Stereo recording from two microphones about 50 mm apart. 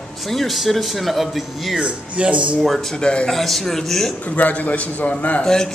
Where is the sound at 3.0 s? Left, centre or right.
Centre.